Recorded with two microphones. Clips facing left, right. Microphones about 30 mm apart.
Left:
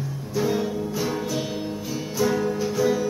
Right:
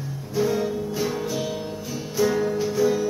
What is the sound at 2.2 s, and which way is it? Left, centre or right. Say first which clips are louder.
Music: right 1 dB; centre.